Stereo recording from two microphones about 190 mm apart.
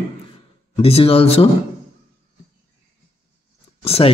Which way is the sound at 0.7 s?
30° left (ahead or behind).